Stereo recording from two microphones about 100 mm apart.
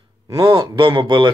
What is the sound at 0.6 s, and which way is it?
Speech, 60° right (ahead or behind).